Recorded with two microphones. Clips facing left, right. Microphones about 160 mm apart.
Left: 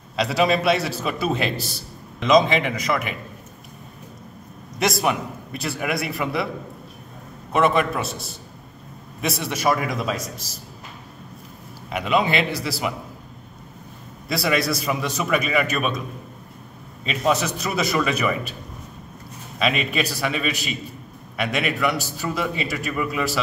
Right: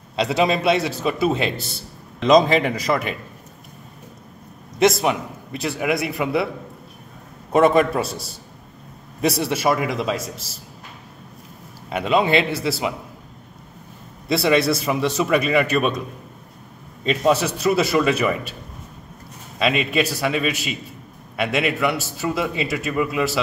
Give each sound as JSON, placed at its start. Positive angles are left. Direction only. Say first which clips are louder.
{"t": 0.1, "sound": "a man's voice", "louder": "right 1 dB", "side_deg": -25}
{"t": 4.7, "sound": "a man's voice", "louder": "right 4 dB", "side_deg": -25}
{"t": 7.5, "sound": "a man's voice", "louder": "right 4 dB", "side_deg": -35}
{"t": 9.2, "sound": "a man's voice", "louder": "right 3 dB", "side_deg": -30}
{"t": 11.9, "sound": "a man's voice", "louder": "right 3 dB", "side_deg": -30}
{"t": 14.3, "sound": "a man's voice", "louder": "right 5 dB", "side_deg": -25}
{"t": 17.0, "sound": "a man's voice", "louder": "right 3 dB", "side_deg": -35}
{"t": 19.6, "sound": "a man's voice", "louder": "right 3 dB", "side_deg": -25}